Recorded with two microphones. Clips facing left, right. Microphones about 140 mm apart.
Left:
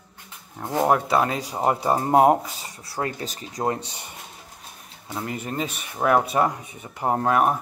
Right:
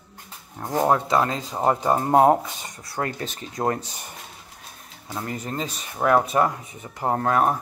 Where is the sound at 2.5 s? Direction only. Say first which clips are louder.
Right 1 dB; 30° left (ahead or behind).